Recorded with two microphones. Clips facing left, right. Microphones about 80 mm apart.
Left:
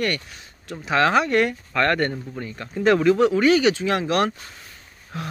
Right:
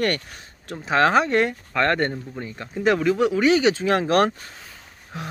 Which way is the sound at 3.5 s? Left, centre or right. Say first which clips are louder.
Even; right.